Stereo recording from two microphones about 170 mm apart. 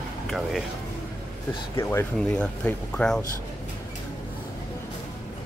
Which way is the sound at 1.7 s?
15° left (ahead or behind).